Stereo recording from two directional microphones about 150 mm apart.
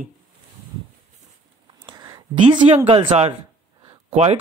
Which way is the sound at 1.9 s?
25° right (ahead or behind).